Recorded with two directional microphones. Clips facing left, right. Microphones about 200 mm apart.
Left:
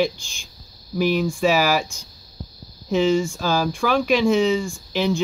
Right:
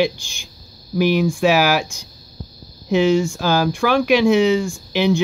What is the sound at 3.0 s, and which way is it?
Speech, centre (ahead or behind).